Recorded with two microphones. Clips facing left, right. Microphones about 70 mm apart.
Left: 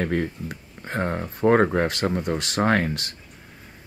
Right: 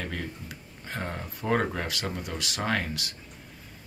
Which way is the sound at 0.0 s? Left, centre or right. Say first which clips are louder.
Left 10 dB; left.